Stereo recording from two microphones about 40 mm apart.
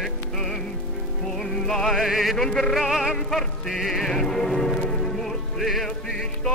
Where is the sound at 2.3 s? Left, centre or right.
Centre.